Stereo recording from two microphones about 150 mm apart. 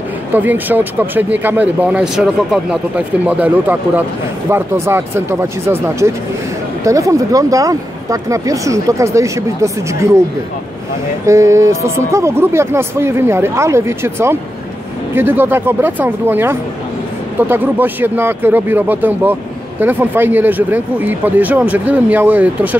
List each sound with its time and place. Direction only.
0.3 s speech: 10° right (ahead or behind)
11.2 s speech: 20° right (ahead or behind)